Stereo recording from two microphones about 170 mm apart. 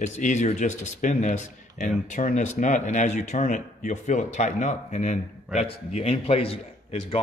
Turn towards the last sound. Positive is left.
turn(degrees=35)  # may be behind; listen again after turning